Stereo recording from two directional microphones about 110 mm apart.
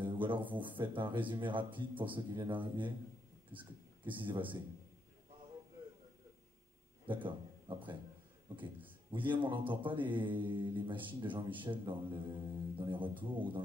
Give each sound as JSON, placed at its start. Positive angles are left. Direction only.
{"t": 0.0, "sound": "a sound", "side_deg": -50}
{"t": 0.7, "sound": "speech", "side_deg": -45}
{"t": 4.0, "sound": "speech", "side_deg": -50}
{"t": 7.1, "sound": "a man's voice", "side_deg": -50}
{"t": 9.1, "sound": "speech", "side_deg": -50}